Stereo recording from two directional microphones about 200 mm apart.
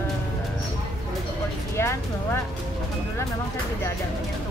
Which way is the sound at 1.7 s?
15° left (ahead or behind).